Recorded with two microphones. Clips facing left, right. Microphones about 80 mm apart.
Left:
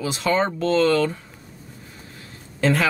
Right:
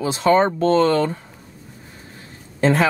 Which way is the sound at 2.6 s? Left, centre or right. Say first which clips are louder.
Right 3 dB; right.